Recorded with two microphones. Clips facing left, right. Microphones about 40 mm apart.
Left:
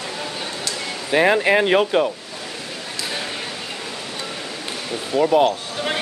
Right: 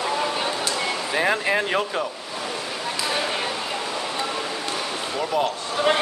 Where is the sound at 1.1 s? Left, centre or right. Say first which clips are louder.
Left 7 dB; left.